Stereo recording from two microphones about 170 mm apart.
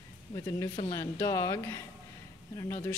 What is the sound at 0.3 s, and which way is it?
Speech, 20° left (ahead or behind).